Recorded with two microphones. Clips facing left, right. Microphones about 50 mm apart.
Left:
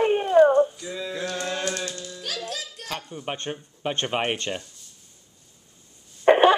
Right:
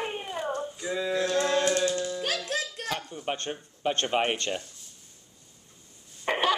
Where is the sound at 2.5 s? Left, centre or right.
Right.